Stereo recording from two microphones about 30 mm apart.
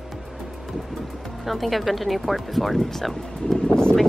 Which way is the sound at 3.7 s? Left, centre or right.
Left.